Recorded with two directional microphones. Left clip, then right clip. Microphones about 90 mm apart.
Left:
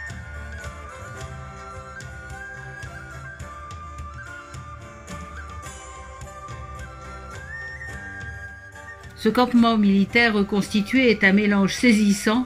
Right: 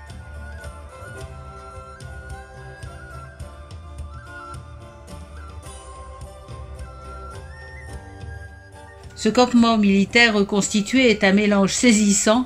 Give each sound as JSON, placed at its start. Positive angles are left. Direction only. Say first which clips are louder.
{"t": 9.2, "sound": "speech", "louder": "right 2 dB", "side_deg": -20}